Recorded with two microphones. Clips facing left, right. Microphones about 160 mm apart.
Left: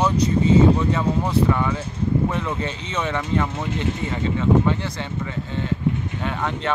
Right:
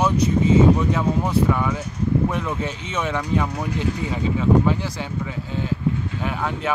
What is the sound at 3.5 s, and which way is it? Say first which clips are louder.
Speech: even; 25° left (ahead or behind).